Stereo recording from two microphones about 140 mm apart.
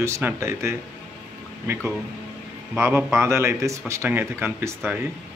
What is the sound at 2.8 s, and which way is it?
A man's voice, 15° right (ahead or behind).